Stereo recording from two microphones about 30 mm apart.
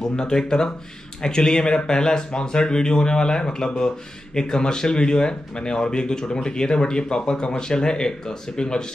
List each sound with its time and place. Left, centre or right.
0.0 s speech: left